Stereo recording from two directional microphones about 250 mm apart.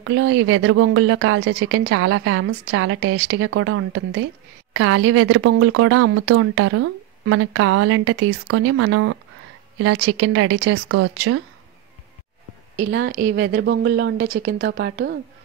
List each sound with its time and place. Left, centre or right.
0.0 s a woman's voice: right
12.9 s a woman's voice: right